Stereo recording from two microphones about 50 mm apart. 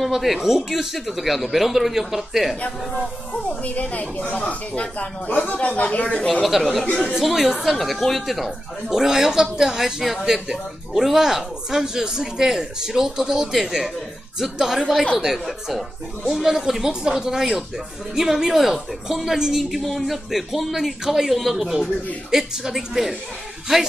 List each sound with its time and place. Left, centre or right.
0.0 s a woman's voice: centre
3.4 s speech: left
6.4 s a woman's voice: centre